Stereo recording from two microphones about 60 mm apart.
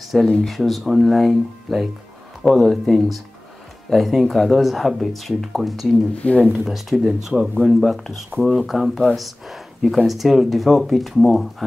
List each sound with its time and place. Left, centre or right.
0.1 s speech: centre
6.1 s speech: left
6.6 s speech: centre